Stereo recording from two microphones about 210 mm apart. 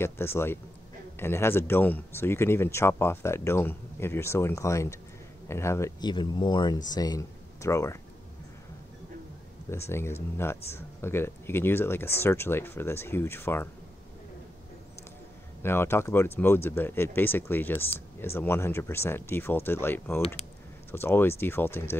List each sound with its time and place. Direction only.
0.0 s speech: 10° left (ahead or behind)
9.8 s speech: 10° left (ahead or behind)
15.6 s speech: 10° left (ahead or behind)